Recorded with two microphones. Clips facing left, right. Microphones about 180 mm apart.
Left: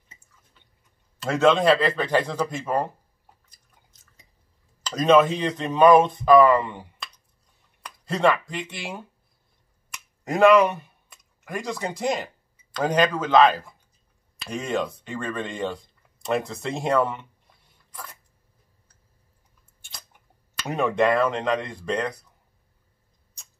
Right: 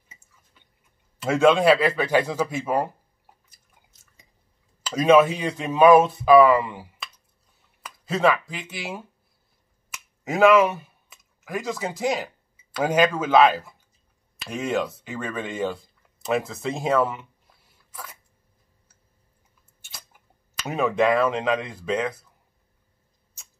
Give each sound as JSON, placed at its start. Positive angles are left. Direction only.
{"t": 1.2, "sound": "speech", "side_deg": -10}
{"t": 4.8, "sound": "speech", "side_deg": -10}
{"t": 9.8, "sound": "finger snapping", "side_deg": 0}
{"t": 12.7, "sound": "speech", "side_deg": -10}
{"t": 19.8, "sound": "a sound", "side_deg": -5}
{"t": 20.6, "sound": "speech", "side_deg": 0}